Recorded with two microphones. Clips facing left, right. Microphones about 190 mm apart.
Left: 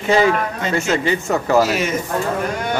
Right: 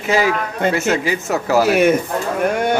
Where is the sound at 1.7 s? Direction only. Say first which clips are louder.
Right 7 dB; 60° right (ahead or behind).